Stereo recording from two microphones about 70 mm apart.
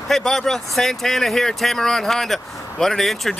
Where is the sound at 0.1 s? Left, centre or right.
Centre.